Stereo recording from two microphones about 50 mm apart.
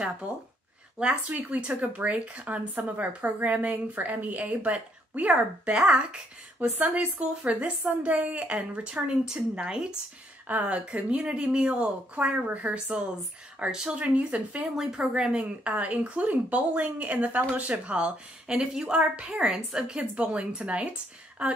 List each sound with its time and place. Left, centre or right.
0.9 s speech: centre
1.5 s speech: right
5.8 s speech: centre
8.8 s speech: centre
10.5 s speech: right
13.6 s speech: centre
14.8 s speech: centre
18.9 s speech: right
19.3 s speech: centre